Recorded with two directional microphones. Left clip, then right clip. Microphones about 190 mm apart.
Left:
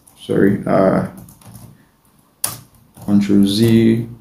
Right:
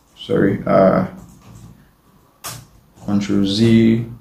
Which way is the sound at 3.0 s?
25° left (ahead or behind).